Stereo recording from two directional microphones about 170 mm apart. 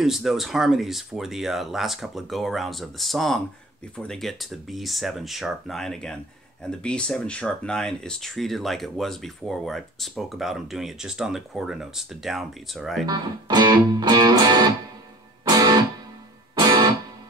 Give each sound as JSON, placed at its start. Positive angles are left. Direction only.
{"t": 0.0, "sound": "speech", "side_deg": 0}
{"t": 13.0, "sound": "speech", "side_deg": -25}
{"t": 15.4, "sound": "music", "side_deg": -20}